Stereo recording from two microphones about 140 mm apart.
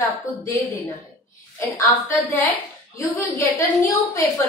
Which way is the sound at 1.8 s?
10° left (ahead or behind).